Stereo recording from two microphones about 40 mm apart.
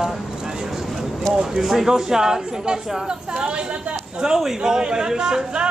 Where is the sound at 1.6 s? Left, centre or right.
Centre.